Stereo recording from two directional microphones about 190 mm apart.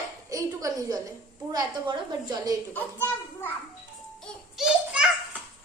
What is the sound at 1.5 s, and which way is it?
A woman's voice, 20° right (ahead or behind).